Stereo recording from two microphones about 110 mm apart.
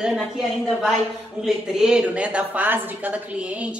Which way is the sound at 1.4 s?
5° right (ahead or behind).